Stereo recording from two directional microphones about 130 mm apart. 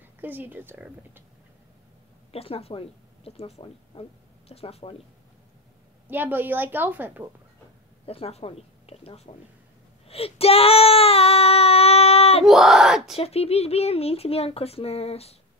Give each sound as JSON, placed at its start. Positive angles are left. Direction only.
{"t": 0.2, "sound": "a woman's voice", "side_deg": -15}
{"t": 2.3, "sound": "speech", "side_deg": 50}
{"t": 6.0, "sound": "a woman's voice", "side_deg": -15}
{"t": 8.0, "sound": "speech", "side_deg": 50}
{"t": 10.0, "sound": "child singing", "side_deg": 50}
{"t": 12.4, "sound": "speech", "side_deg": 0}
{"t": 13.1, "sound": "speech", "side_deg": 50}